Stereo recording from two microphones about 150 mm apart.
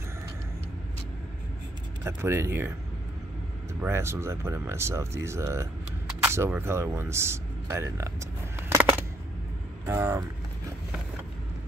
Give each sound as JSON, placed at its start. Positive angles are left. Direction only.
{"t": 2.0, "sound": "speech", "side_deg": -15}
{"t": 3.8, "sound": "speech", "side_deg": -15}
{"t": 6.2, "sound": "a sound", "side_deg": -15}
{"t": 9.8, "sound": "speech", "side_deg": -15}